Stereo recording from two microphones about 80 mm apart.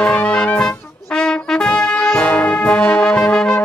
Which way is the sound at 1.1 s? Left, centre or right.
Centre.